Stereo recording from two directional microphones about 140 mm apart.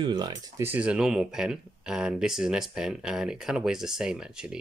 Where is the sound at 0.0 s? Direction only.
30° right (ahead or behind).